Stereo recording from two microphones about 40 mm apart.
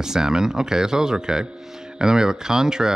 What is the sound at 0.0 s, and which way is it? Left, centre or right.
Speech, centre.